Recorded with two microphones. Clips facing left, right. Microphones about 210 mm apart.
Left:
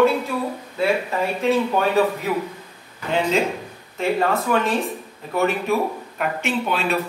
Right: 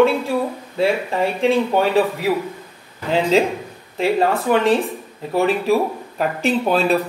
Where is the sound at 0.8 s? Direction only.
30° right (ahead or behind).